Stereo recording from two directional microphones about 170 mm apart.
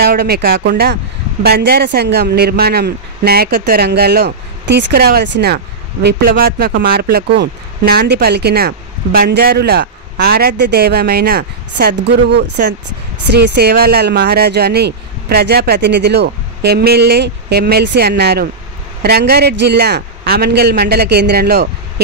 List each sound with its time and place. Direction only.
0.0 s speech: 65° right (ahead or behind); by 5.6 s 80° right
6.0 s speech: 65° right (ahead or behind)